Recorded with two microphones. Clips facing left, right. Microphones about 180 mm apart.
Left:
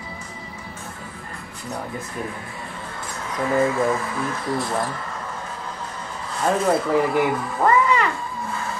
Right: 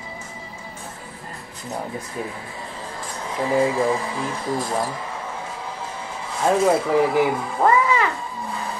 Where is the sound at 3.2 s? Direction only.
30° right (ahead or behind).